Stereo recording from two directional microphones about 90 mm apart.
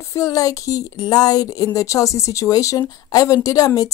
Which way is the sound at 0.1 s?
40° left (ahead or behind).